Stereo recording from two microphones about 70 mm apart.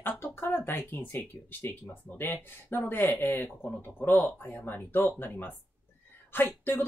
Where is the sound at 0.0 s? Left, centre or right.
Left.